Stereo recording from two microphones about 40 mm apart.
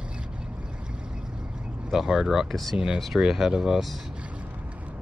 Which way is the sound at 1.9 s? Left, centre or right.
Centre.